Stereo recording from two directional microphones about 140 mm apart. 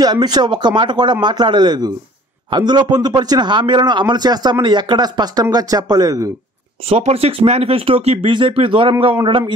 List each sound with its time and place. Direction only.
0.0 s a man's voice: 30° right (ahead or behind)
6.9 s a man's voice: 45° right (ahead or behind)